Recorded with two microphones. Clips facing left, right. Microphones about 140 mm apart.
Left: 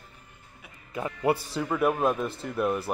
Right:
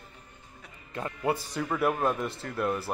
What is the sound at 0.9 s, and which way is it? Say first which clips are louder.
Speech: left 3 dB; 10° left (ahead or behind).